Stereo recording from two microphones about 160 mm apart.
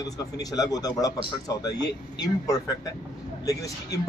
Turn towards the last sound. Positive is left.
turn(degrees=20)  # may be behind; listen again after turning